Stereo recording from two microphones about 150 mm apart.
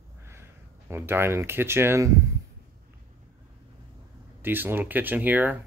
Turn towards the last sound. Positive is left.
turn(degrees=-10)  # may be behind; listen again after turning